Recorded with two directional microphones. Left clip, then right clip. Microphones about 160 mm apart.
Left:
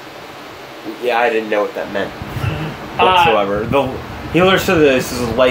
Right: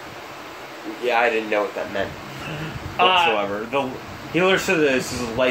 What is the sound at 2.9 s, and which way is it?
Speech, 25° right (ahead or behind).